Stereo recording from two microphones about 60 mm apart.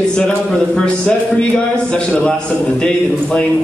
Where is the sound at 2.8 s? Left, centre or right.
Centre.